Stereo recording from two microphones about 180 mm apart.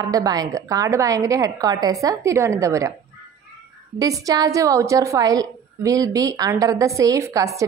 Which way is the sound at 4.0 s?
20° right (ahead or behind).